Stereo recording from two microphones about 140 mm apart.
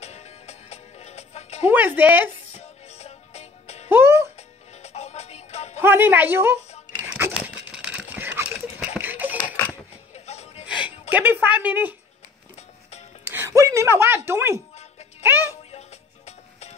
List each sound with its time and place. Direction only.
0.0 s music: 50° left (ahead or behind)
1.7 s speech: 10° right (ahead or behind)
2.5 s music: 50° left (ahead or behind)
3.9 s music: 15° right (ahead or behind)
4.4 s music: 50° left (ahead or behind)
5.8 s speech: 15° right (ahead or behind)
7.1 s a sound: 15° right (ahead or behind)
7.3 s patter: 10° right (ahead or behind)
8.9 s a sound: 15° right (ahead or behind)
10.1 s music: 50° left (ahead or behind)
11.1 s speech: 15° right (ahead or behind)
13.2 s a sound: 15° right (ahead or behind)
15.2 s music: 15° right (ahead or behind)
16.3 s music: 50° left (ahead or behind)